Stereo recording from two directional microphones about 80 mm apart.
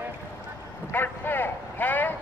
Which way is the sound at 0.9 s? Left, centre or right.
Left.